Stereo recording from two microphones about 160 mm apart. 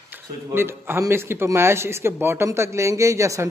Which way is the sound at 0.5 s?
15° right (ahead or behind).